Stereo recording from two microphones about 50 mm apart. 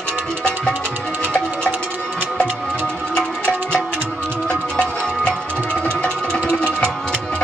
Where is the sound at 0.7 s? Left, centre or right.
Right.